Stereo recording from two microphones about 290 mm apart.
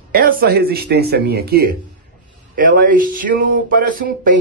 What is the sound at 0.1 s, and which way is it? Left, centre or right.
Speech, right.